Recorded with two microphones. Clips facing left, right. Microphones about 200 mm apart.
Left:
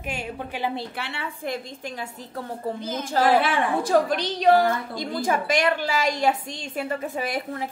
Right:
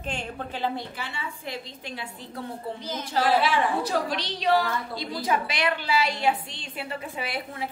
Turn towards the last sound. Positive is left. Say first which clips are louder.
# left 4 dB
turn(degrees=45)  # may be behind; listen again after turning